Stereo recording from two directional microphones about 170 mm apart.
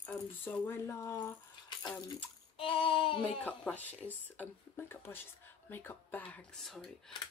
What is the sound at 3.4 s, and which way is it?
Speech, 10° left (ahead or behind).